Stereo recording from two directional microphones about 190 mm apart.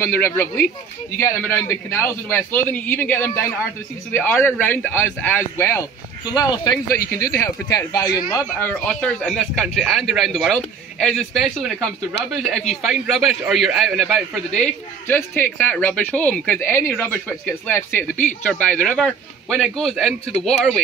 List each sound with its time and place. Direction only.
0.0 s speech: 10° left (ahead or behind)